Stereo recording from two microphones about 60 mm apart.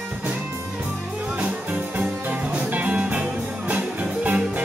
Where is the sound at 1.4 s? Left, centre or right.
Right.